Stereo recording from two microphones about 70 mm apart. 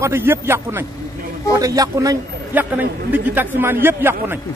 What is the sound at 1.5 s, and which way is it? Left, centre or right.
Speech, right.